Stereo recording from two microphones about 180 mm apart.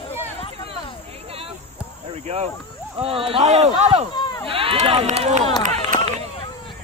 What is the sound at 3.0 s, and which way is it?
Speech, 30° right (ahead or behind).